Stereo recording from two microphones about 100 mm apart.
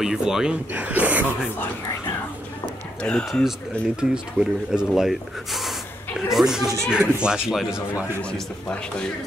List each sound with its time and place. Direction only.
0.0 s speech: 5° right (ahead or behind)
3.0 s speech: 10° left (ahead or behind)
3.3 s speech: centre (ahead or behind)
8.2 s a man's voice: 10° left (ahead or behind)